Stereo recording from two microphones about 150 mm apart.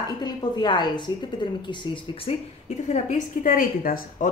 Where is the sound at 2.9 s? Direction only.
60° left (ahead or behind).